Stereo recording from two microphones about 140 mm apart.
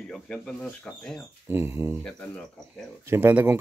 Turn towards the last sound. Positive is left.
turn(degrees=-15)  # may be behind; listen again after turning